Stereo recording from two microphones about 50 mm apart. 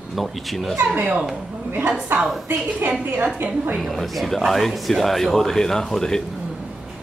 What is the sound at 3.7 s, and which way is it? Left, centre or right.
Speech, centre.